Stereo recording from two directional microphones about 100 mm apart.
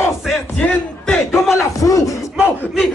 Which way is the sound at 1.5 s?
30° left (ahead or behind).